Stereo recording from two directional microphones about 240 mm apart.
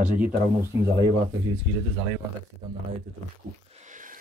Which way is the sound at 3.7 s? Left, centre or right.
Right.